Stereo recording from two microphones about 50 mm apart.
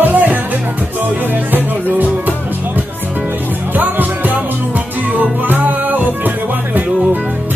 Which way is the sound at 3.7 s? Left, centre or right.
Right.